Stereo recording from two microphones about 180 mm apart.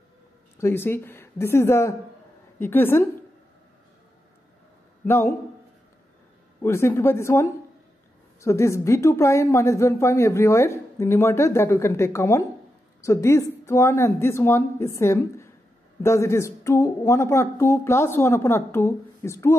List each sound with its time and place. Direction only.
0.6 s a woman's voice: 15° left (ahead or behind)
5.0 s a man's voice: 15° left (ahead or behind)
6.6 s a woman's voice: 15° left (ahead or behind)